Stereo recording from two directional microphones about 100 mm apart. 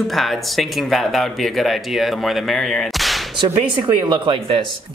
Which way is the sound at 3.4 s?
50° right (ahead or behind).